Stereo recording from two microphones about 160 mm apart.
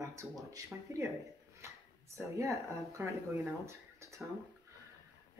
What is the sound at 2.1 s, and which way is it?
Speech, 20° right (ahead or behind).